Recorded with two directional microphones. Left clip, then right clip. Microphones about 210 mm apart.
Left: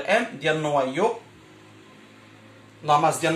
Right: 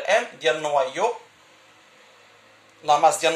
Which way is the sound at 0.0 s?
40° right (ahead or behind).